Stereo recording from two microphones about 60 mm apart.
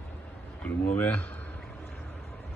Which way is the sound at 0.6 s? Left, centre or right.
Left.